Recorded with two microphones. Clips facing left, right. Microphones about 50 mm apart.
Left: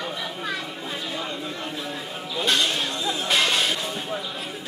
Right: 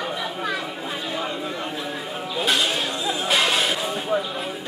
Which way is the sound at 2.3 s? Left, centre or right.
Centre.